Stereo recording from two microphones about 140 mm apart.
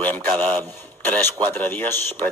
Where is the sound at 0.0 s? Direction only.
10° left (ahead or behind).